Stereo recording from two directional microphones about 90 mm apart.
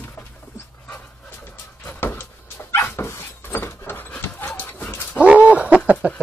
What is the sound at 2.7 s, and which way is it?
Dog, 30° left (ahead or behind).